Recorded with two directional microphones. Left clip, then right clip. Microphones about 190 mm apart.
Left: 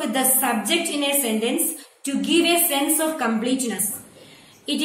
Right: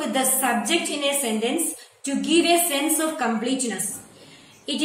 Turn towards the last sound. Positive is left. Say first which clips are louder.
# left 2 dB
turn(degrees=10)  # may be behind; listen again after turning